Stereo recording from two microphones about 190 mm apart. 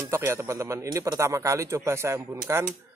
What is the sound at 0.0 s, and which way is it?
A man's voice, 15° right (ahead or behind).